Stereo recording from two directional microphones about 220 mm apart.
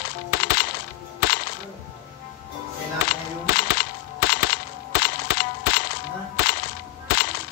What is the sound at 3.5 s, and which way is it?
Cap gun, 45° left (ahead or behind).